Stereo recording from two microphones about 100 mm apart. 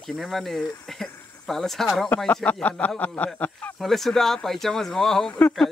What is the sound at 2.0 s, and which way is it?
Speech, 15° left (ahead or behind).